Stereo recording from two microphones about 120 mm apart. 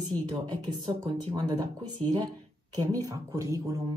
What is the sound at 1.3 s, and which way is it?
Speech, 35° right (ahead or behind).